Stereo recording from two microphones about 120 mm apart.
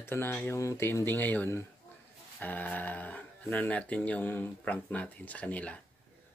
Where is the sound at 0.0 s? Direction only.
20° left (ahead or behind).